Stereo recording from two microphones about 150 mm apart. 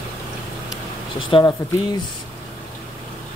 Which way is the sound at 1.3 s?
35° left (ahead or behind).